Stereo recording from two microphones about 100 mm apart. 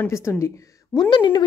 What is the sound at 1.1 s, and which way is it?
Speech, 50° left (ahead or behind).